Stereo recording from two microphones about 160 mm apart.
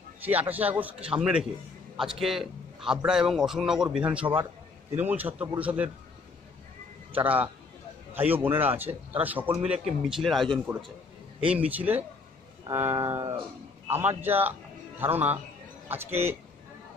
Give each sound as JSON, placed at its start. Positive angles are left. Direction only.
{"t": 0.2, "sound": "a man's voice", "side_deg": -10}
{"t": 7.2, "sound": "a man's voice", "side_deg": -10}